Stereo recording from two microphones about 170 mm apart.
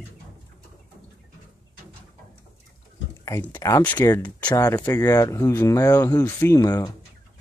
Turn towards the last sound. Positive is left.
turn(degrees=25)  # may be behind; listen again after turning